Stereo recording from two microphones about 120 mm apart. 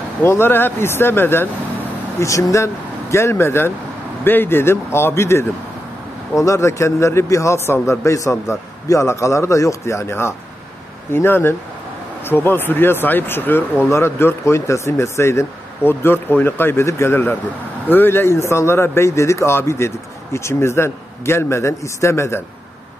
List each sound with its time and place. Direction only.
0.2 s speech: 20° left (ahead or behind)